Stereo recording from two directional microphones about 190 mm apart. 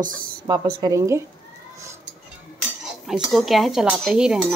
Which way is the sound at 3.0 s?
Centre (ahead or behind).